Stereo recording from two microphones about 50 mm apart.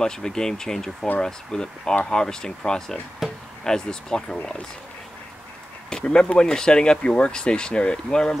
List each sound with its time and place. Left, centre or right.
0.0 s speech: centre
3.2 s music: centre
3.6 s speech: centre
5.9 s speech: centre